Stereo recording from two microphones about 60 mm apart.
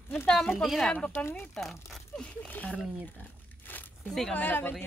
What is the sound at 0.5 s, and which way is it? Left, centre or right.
Speech, centre.